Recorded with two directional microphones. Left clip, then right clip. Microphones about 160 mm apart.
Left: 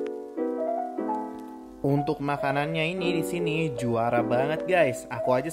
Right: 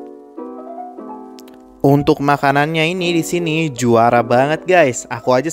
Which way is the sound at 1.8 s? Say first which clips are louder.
Right 13 dB; 70° right (ahead or behind).